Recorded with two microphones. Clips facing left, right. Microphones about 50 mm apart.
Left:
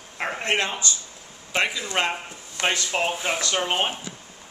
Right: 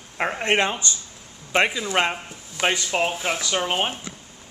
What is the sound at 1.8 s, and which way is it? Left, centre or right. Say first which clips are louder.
Speech: right 3 dB; centre.